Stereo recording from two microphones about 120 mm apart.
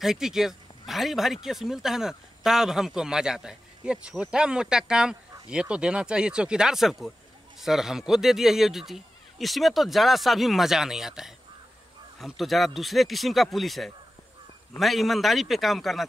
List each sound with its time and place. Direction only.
0.0 s speech: 5° right (ahead or behind)